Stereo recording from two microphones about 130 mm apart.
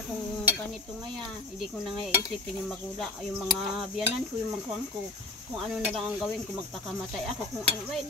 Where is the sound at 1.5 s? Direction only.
Centre (ahead or behind).